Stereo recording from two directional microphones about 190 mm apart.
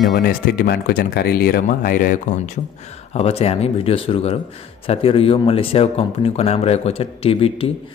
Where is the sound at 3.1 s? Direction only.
30° left (ahead or behind).